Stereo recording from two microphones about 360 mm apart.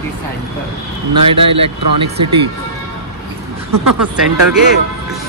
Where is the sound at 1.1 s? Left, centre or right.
Centre.